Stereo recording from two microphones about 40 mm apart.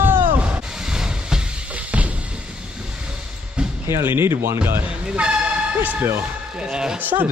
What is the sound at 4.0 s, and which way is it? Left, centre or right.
Speech, right.